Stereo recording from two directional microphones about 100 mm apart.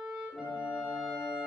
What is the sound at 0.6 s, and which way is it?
Brass instrument, 20° left (ahead or behind).